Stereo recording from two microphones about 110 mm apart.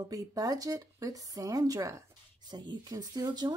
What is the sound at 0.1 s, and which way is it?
Speech, 35° right (ahead or behind).